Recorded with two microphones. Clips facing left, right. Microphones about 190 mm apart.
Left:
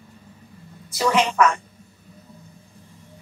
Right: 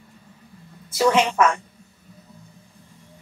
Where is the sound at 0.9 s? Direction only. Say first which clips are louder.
Right 2 dB; 25° right (ahead or behind).